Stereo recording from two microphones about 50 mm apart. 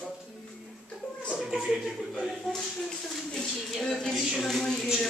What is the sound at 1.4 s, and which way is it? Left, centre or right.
Chuckle, centre.